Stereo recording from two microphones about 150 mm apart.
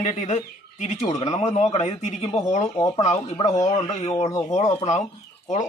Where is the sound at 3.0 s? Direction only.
45° left (ahead or behind).